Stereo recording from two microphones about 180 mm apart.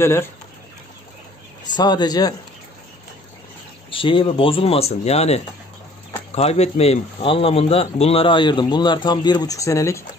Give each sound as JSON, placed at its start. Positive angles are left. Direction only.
{"t": 0.0, "sound": "speech", "side_deg": 15}
{"t": 1.8, "sound": "speech", "side_deg": 25}
{"t": 3.9, "sound": "speech", "side_deg": 30}